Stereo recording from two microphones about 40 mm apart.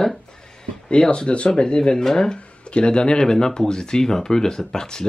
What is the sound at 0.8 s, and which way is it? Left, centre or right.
Speech, left.